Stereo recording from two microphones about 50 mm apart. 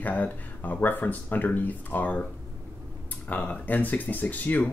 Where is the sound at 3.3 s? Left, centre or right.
Left.